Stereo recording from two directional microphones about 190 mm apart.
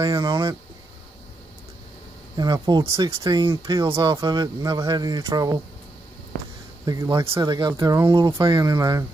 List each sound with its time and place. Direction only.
0.0 s speech: 20° right (ahead or behind)
2.3 s speech: 20° right (ahead or behind)
6.9 s speech: 20° right (ahead or behind)